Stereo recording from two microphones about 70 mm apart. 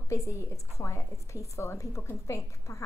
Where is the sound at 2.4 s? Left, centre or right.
Left.